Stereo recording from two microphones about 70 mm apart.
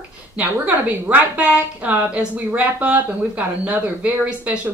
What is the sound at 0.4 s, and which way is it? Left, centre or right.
A woman's voice, right.